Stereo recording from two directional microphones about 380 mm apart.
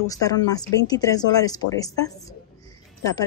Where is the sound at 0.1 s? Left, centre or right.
Centre.